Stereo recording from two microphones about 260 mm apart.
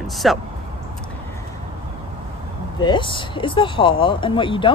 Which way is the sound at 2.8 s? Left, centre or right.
Centre.